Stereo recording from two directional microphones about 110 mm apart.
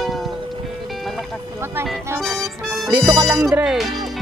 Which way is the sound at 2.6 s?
Centre (ahead or behind).